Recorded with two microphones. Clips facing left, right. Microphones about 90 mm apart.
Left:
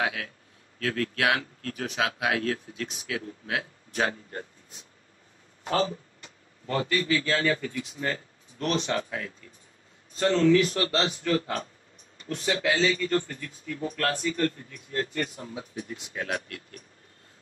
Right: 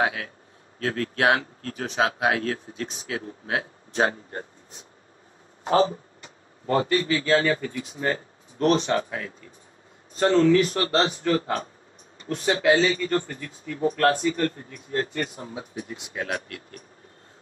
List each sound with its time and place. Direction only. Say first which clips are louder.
0.0 s speech: right 4 dB; 35° right (ahead or behind)
16.2 s speech: right 2 dB; 45° right (ahead or behind)